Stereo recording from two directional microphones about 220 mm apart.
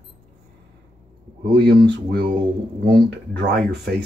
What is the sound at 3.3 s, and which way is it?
Speech, 45° right (ahead or behind).